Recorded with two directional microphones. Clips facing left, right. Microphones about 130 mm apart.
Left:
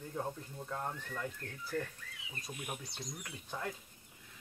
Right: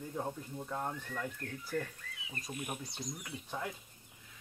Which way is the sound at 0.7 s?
10° right (ahead or behind).